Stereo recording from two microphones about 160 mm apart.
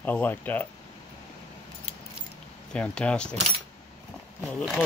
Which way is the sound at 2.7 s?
5° left (ahead or behind).